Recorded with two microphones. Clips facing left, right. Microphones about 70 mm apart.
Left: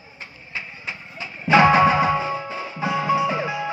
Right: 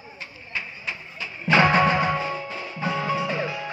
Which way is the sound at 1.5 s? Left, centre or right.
Centre.